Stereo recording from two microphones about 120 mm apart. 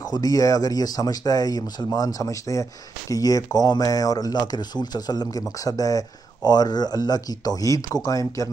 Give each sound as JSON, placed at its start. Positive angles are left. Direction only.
{"t": 0.0, "sound": "speech", "side_deg": 30}